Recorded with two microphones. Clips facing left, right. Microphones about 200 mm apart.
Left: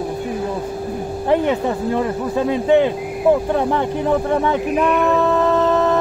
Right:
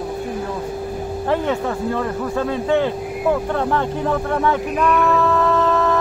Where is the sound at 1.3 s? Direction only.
20° left (ahead or behind).